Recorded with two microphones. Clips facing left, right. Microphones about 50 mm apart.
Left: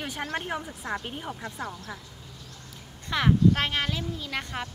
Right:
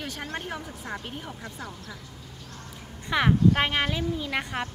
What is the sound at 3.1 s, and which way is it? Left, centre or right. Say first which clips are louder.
Speech: right 1 dB; centre.